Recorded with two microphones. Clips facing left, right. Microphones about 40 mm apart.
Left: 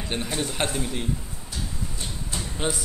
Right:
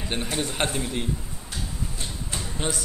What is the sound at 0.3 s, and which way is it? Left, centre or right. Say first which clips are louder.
Speech: right 1 dB; centre.